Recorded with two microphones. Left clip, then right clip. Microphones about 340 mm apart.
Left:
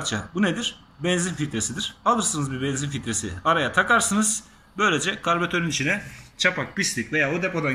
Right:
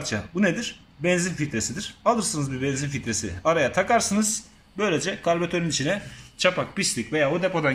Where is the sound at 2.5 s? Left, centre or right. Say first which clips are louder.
Even; right.